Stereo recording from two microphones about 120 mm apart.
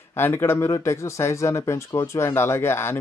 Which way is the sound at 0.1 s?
20° left (ahead or behind).